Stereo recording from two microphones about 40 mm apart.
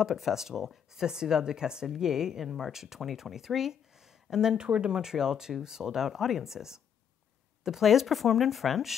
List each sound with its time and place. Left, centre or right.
0.1 s speech: centre
4.6 s speech: right
4.9 s speech: centre